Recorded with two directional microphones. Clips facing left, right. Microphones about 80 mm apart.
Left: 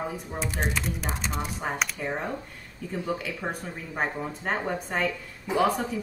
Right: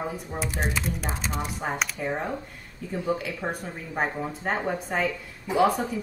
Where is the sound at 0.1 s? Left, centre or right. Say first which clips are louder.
Right 1 dB; centre.